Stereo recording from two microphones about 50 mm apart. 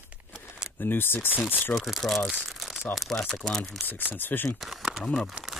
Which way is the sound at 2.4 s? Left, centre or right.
Centre.